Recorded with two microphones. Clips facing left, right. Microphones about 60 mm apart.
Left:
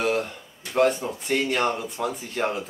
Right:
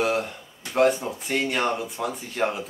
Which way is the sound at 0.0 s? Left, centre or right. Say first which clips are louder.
Even; centre.